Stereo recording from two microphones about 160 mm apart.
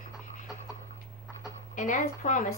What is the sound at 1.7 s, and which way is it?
Speech, 55° left (ahead or behind).